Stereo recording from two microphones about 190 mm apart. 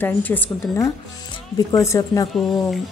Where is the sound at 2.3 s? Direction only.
Centre (ahead or behind).